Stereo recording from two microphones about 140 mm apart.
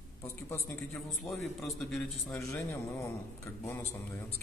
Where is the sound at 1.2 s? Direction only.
Centre (ahead or behind).